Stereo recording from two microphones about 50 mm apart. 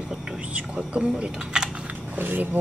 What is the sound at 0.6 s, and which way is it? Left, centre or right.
Speech, right.